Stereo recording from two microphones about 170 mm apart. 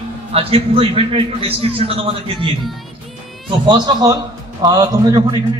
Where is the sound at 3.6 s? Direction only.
25° right (ahead or behind).